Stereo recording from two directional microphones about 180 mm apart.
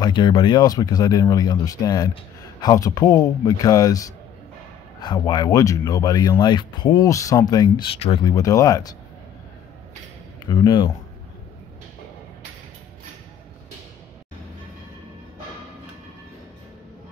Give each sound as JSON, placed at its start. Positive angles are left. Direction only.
{"t": 0.0, "sound": "speech", "side_deg": 25}
{"t": 8.3, "sound": "speech", "side_deg": 20}
{"t": 10.5, "sound": "speech", "side_deg": 25}